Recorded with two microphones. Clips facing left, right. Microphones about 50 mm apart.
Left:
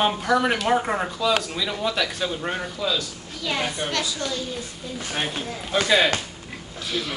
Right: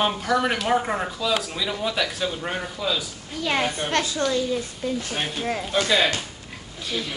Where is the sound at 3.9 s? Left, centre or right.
Right.